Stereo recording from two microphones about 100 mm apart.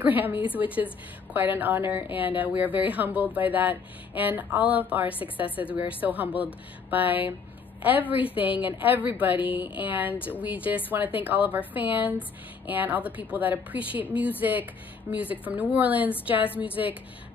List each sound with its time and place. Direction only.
0.0 s speech: 20° right (ahead or behind)
5.2 s a woman's voice: 60° left (ahead or behind)
5.9 s speech: 15° right (ahead or behind)